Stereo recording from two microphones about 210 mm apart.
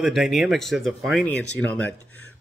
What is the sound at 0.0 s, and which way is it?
Speech, centre (ahead or behind).